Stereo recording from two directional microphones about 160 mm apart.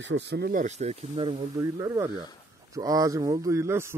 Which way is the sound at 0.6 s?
45° right (ahead or behind).